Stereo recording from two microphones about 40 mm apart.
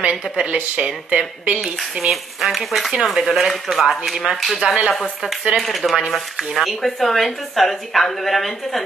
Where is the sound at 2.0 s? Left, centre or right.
Centre.